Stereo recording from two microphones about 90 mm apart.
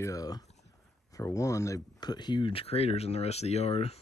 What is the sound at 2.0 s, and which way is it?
Speech, 55° left (ahead or behind).